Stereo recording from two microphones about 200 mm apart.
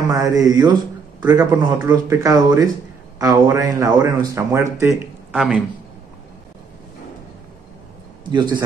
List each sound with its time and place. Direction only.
0.1 s a man's voice: 15° right (ahead or behind)
5.3 s speech: 5° right (ahead or behind)
8.3 s a man's voice: 20° right (ahead or behind)